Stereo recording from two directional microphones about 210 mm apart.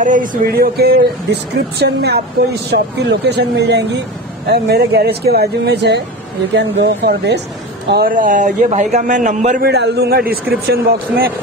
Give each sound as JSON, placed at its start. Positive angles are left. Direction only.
{"t": 0.0, "sound": "a woman's voice", "side_deg": -40}
{"t": 7.9, "sound": "a man's voice", "side_deg": -45}
{"t": 9.7, "sound": "a woman's voice", "side_deg": -50}